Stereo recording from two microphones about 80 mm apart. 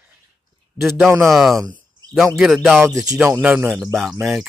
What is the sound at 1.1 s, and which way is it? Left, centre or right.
Speech, right.